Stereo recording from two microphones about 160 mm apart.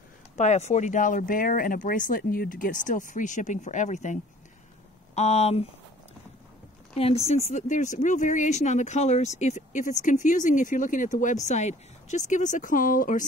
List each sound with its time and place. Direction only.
0.4 s speech: 45° left (ahead or behind)
7.0 s speech: 40° left (ahead or behind); by 13.2 s 55° left (ahead or behind)